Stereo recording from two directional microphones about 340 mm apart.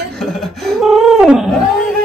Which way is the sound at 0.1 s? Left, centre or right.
Centre.